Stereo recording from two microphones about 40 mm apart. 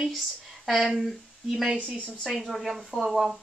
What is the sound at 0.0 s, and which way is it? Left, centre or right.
Speech, centre.